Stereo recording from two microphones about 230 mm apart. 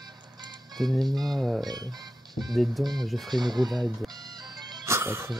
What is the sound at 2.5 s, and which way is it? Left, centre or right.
Speech, centre.